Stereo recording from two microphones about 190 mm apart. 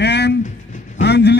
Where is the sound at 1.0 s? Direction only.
65° left (ahead or behind).